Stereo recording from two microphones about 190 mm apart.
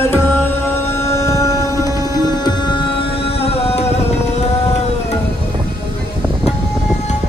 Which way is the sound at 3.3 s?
30° left (ahead or behind).